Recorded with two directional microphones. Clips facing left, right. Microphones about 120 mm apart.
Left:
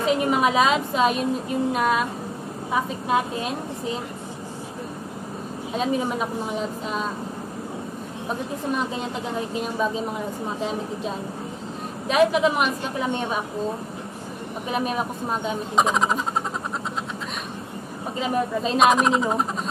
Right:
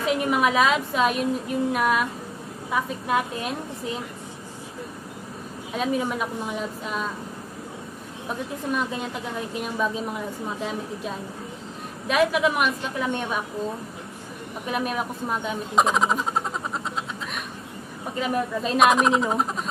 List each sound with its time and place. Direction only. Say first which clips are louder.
0.0 s a woman's voice: left 2 dB; 30° left (ahead or behind)
5.7 s a woman's voice: left 1 dB; 25° left (ahead or behind)
8.3 s a woman's voice: left 1 dB; 25° left (ahead or behind)
14.7 s a woman's voice: left 1 dB; 25° left (ahead or behind)
15.7 s speech: even; centre (ahead or behind)
18.2 s a woman's voice: left 2 dB; 30° left (ahead or behind)
18.8 s speech: even; centre (ahead or behind)